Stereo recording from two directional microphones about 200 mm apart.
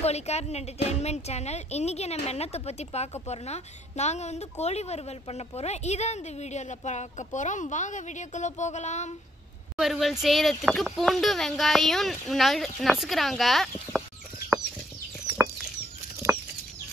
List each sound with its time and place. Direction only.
0.0 s speech: 35° left (ahead or behind)
9.8 s speech: centre (ahead or behind)